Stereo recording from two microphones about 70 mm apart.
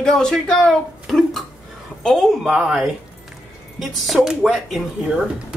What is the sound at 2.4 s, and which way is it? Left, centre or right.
Speech, centre.